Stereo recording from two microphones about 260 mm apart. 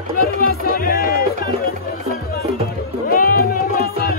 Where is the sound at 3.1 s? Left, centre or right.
Left.